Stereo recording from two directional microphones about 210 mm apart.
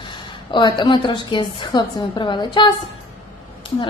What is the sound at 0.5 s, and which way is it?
A woman's voice, 20° left (ahead or behind).